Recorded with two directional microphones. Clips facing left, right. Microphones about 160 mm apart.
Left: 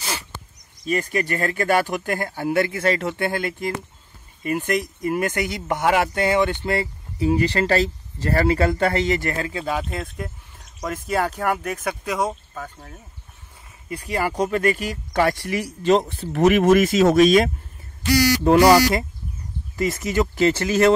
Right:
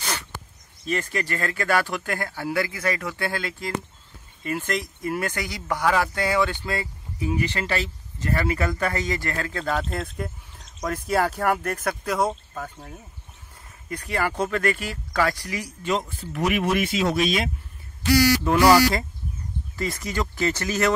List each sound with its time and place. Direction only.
0.7 s speech: 15° left (ahead or behind)
7.2 s speech: 35° left (ahead or behind)
9.5 s speech: 10° left (ahead or behind)
13.8 s speech: 10° left (ahead or behind); by 16.0 s 30° left (ahead or behind)
16.2 s speech: 40° left (ahead or behind)
18.6 s speech: 20° left (ahead or behind)